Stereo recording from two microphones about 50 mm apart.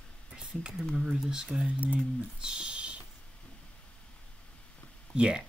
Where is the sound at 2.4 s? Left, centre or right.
Centre.